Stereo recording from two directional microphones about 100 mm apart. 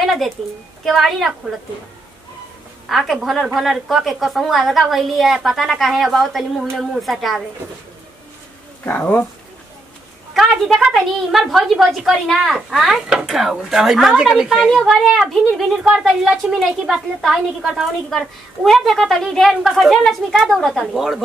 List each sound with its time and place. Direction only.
0.0 s a sound: centre (ahead or behind)
0.8 s a woman's voice: centre (ahead or behind)
2.9 s a woman's voice: centre (ahead or behind)
8.8 s speech: 15° left (ahead or behind)
10.3 s a woman's voice: centre (ahead or behind)